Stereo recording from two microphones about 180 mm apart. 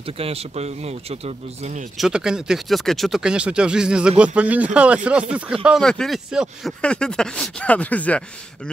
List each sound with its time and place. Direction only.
0.0 s speech: 35° right (ahead or behind)
2.0 s speech: 5° right (ahead or behind)